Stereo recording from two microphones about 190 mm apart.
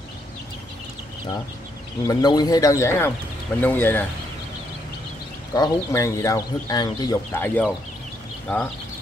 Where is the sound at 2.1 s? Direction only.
20° left (ahead or behind).